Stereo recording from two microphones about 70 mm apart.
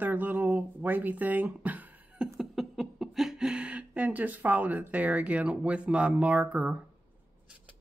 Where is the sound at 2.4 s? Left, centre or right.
Centre.